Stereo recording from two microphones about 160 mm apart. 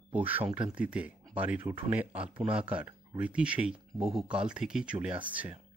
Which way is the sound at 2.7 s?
10° right (ahead or behind).